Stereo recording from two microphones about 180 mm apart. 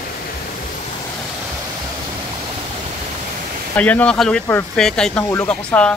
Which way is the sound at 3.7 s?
10° left (ahead or behind).